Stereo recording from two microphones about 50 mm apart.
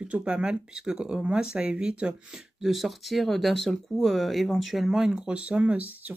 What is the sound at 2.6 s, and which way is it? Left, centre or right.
Speech, centre.